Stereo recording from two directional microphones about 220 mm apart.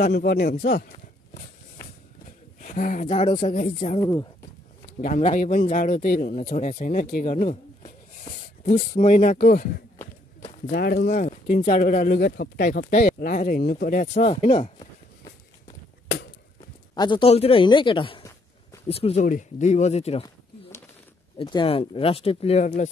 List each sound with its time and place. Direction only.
0.0 s speech: 45° left (ahead or behind)
2.6 s speech: 35° left (ahead or behind)
4.0 s speech: 15° left (ahead or behind)
5.0 s speech: 30° left (ahead or behind)
10.7 s speech: 45° left (ahead or behind); by 15.3 s 25° left (ahead or behind)
16.9 s speech: 20° left (ahead or behind)
21.4 s speech: 20° left (ahead or behind)